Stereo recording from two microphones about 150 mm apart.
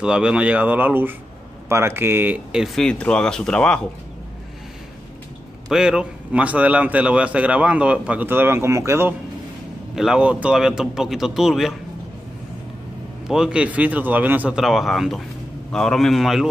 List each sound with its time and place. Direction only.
0.0 s a man's voice: 5° right (ahead or behind)
2.5 s speech: centre (ahead or behind)
5.7 s a man's voice: 5° right (ahead or behind)
9.9 s speech: 5° right (ahead or behind)
13.3 s a man's voice: 5° right (ahead or behind)